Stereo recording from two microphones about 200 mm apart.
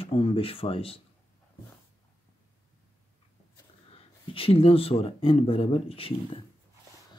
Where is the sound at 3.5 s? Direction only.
25° left (ahead or behind).